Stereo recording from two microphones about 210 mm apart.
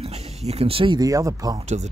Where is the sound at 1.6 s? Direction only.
30° right (ahead or behind).